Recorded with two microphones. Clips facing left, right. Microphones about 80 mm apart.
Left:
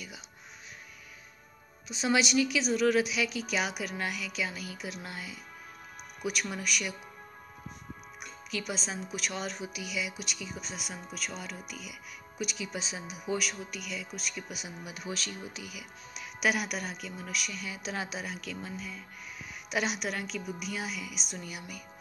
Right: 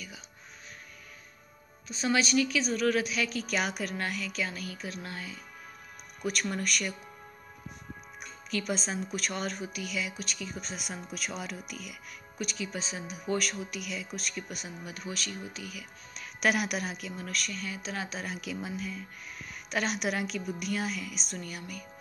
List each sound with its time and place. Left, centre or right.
1.9 s speech: centre
6.5 s speech: centre
8.2 s speech: centre
12.4 s speech: centre
16.4 s speech: centre; by 18.2 s left
18.4 s speech: centre
19.7 s speech: centre
20.0 s speech: centre